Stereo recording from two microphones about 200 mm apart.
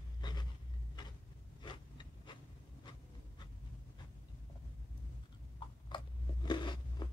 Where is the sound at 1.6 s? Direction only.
25° left (ahead or behind).